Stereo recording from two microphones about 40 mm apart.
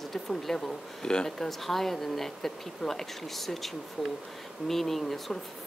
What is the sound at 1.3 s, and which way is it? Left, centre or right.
Speech, centre.